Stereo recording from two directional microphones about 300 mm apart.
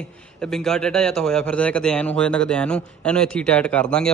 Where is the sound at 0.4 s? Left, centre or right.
Centre.